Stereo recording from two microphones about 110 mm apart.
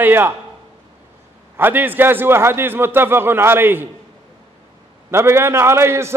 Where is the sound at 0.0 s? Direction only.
20° right (ahead or behind).